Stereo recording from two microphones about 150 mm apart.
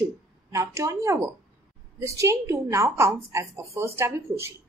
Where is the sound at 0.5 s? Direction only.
20° right (ahead or behind).